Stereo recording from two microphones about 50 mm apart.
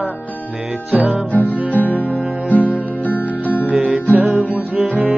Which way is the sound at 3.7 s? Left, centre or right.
Right.